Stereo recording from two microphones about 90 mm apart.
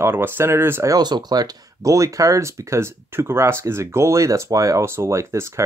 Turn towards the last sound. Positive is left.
turn(degrees=-35)  # may be behind; listen again after turning